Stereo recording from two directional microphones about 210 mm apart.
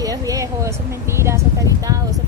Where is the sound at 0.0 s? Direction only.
15° right (ahead or behind).